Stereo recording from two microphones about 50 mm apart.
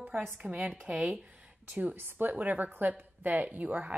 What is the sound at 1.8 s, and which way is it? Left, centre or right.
A woman's voice, right.